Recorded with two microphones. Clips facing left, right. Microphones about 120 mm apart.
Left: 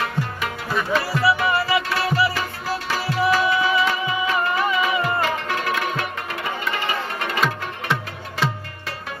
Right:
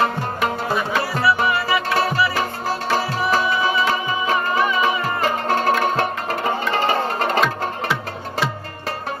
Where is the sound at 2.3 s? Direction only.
40° right (ahead or behind).